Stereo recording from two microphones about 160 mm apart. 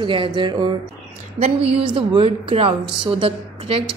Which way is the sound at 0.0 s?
30° right (ahead or behind).